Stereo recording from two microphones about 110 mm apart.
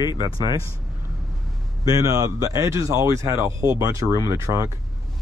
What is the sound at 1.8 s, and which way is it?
Speech, 35° right (ahead or behind).